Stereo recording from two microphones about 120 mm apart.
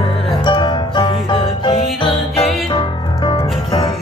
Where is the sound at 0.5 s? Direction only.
40° left (ahead or behind).